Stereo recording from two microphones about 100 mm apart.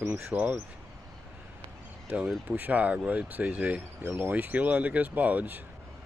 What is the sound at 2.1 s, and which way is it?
Speech, 15° right (ahead or behind).